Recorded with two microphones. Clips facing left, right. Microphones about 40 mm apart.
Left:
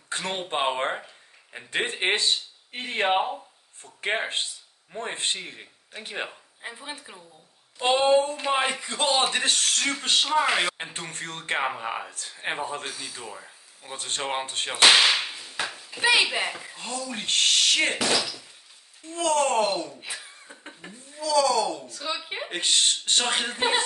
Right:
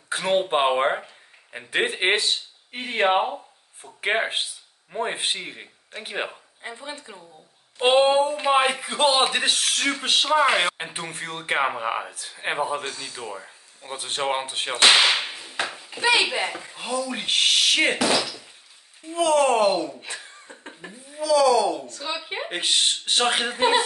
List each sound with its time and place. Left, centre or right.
0.1 s speech: centre
6.6 s speech: centre
8.0 s speech: centre
16.1 s speech: centre
16.7 s speech: centre
20.2 s cough: centre
21.1 s speech: centre